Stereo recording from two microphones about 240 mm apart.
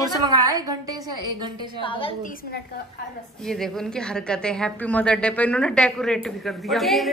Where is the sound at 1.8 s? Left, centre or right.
Left.